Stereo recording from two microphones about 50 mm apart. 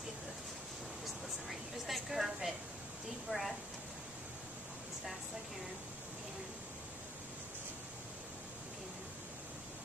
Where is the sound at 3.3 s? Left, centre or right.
Left.